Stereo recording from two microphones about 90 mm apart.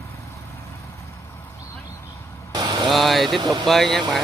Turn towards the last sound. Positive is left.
turn(degrees=5)  # may be behind; listen again after turning